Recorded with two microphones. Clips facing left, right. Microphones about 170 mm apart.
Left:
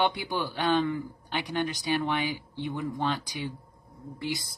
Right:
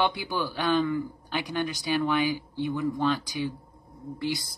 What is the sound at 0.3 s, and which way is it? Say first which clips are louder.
Speech: right 1 dB; 25° left (ahead or behind).